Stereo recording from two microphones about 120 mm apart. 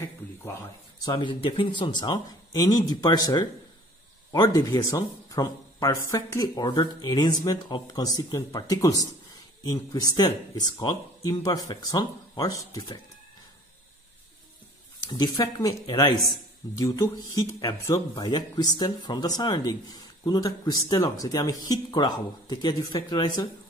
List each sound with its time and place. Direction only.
1.0 s speech: 45° left (ahead or behind)
15.0 s speech: 35° left (ahead or behind)